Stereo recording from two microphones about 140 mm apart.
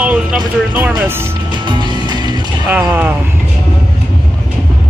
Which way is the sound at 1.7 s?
35° right (ahead or behind).